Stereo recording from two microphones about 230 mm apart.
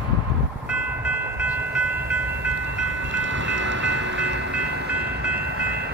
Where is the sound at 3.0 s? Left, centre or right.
Right.